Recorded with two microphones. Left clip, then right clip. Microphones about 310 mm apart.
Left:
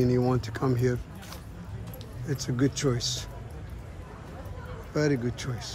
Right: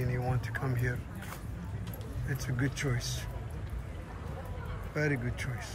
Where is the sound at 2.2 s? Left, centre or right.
Centre.